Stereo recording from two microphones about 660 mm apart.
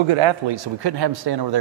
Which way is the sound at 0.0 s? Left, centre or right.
Right.